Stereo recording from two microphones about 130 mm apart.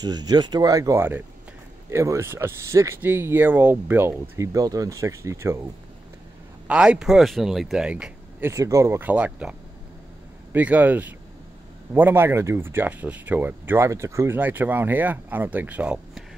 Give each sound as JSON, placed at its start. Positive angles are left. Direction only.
{"t": 0.0, "sound": "speech", "side_deg": -30}
{"t": 6.7, "sound": "speech", "side_deg": -5}
{"t": 8.5, "sound": "speech", "side_deg": -25}